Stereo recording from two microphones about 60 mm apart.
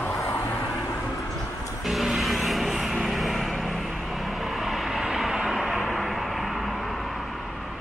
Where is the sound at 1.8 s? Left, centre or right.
Centre.